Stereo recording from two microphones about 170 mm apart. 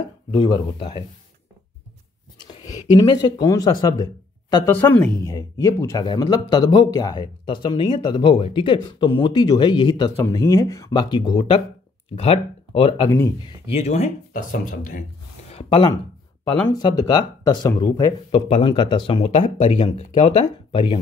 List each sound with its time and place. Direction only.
0.3 s speech: 30° left (ahead or behind)
2.4 s speech: 25° left (ahead or behind)
4.6 s speech: 10° left (ahead or behind); by 13.1 s 30° left (ahead or behind)
13.7 s speech: 40° left (ahead or behind)
15.5 s a sound: 35° left (ahead or behind)
16.7 s speech: 25° left (ahead or behind)